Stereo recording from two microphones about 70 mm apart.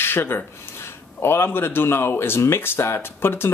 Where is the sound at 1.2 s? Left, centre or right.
Left.